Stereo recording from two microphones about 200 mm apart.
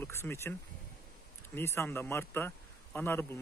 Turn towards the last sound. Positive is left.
turn(degrees=10)  # may be behind; listen again after turning